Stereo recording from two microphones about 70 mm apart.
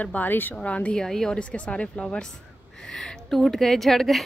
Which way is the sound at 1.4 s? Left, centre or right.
Centre.